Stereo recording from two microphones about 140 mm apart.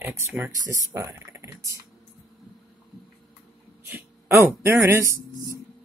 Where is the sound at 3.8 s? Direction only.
20° right (ahead or behind).